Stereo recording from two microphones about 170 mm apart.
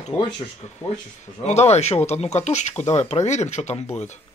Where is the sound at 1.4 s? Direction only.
40° left (ahead or behind).